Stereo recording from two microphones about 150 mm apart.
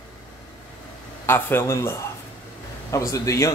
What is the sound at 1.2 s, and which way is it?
Speech, 15° left (ahead or behind).